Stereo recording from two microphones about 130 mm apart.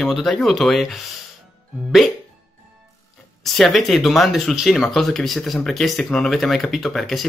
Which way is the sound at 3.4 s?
Centre (ahead or behind).